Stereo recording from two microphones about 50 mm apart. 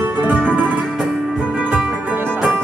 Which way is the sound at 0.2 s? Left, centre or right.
Right.